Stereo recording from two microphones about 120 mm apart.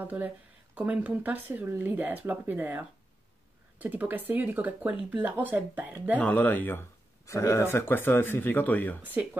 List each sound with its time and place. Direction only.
0.0 s speech: 15° right (ahead or behind)
6.1 s speech: 10° left (ahead or behind)
9.0 s speech: 15° right (ahead or behind)